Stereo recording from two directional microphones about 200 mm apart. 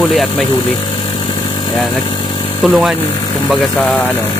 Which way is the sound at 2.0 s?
25° left (ahead or behind).